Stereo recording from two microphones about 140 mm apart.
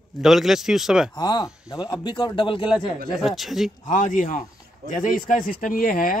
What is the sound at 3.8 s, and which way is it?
Speech, 65° left (ahead or behind).